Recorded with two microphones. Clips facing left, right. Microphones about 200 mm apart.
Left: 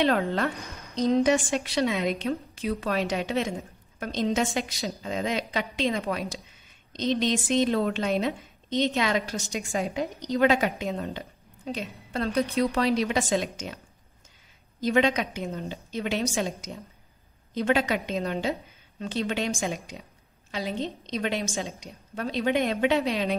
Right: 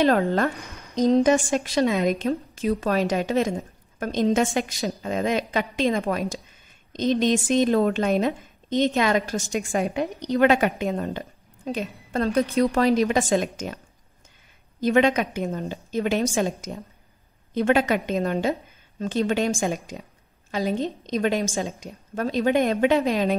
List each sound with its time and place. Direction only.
0.0 s a woman's voice: 45° right (ahead or behind)
14.8 s a woman's voice: 50° right (ahead or behind)